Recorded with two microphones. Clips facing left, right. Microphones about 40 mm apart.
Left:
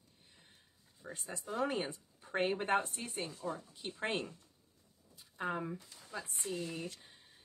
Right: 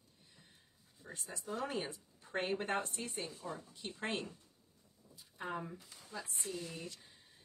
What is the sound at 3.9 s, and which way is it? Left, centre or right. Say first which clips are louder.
Speech: left 3 dB; left.